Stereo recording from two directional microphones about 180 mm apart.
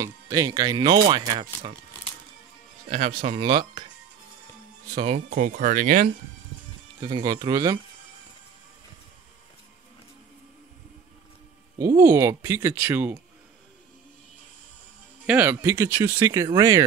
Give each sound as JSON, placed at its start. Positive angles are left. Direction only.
{"t": 0.0, "sound": "speech", "side_deg": -20}
{"t": 2.9, "sound": "speech", "side_deg": -35}
{"t": 4.9, "sound": "speech", "side_deg": -35}
{"t": 5.3, "sound": "speech", "side_deg": -50}
{"t": 7.0, "sound": "speech", "side_deg": -25}
{"t": 11.8, "sound": "speech", "side_deg": -15}
{"t": 15.2, "sound": "speech", "side_deg": -10}